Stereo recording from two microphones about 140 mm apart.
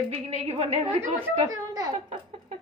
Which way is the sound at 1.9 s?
40° right (ahead or behind).